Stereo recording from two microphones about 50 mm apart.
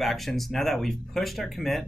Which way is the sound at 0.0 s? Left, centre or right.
Centre.